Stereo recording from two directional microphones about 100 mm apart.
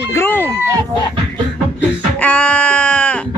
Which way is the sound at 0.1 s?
25° left (ahead or behind).